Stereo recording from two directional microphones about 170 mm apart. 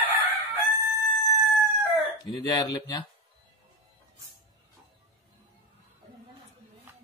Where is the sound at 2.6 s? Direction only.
20° left (ahead or behind).